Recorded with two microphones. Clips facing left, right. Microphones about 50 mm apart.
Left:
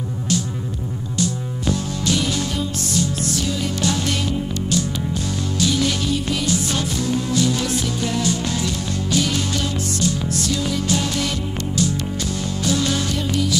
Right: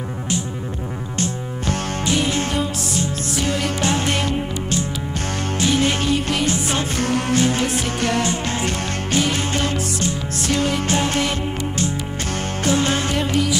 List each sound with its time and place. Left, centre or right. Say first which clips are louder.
2.0 s music: right 1 dB; right
5.6 s music: right 2 dB; right
7.0 s music: right 3 dB; right
7.3 s music: right 1 dB; right
10.5 s music: right 6 dB; right
10.9 s music: right 2 dB; right
12.6 s music: right 2 dB; right